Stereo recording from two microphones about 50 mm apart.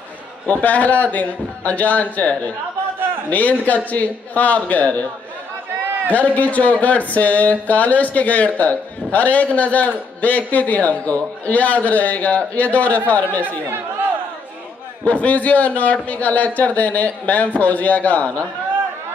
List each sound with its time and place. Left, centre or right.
0.5 s a man's voice: left
6.1 s a man's voice: left
15.0 s a man's voice: left